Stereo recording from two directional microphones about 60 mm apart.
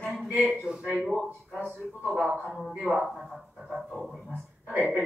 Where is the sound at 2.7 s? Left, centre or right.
Centre.